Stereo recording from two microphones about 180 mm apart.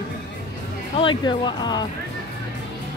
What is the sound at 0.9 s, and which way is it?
Speech, 25° left (ahead or behind).